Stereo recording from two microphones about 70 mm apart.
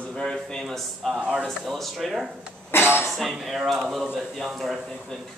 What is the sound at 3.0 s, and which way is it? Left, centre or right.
Speech, centre.